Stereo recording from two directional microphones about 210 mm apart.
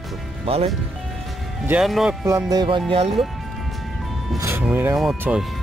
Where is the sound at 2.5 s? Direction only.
20° right (ahead or behind).